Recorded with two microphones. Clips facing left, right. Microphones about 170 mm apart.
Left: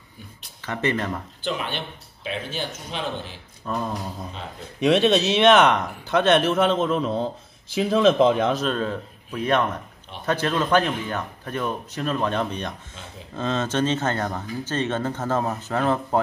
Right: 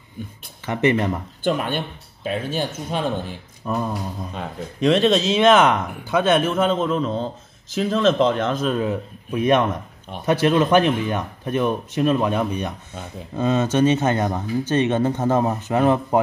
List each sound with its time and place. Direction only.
0.7 s speech: 15° right (ahead or behind)
1.4 s speech: 50° right (ahead or behind)
3.6 s speech: 5° right (ahead or behind)
8.6 s speech: 10° right (ahead or behind)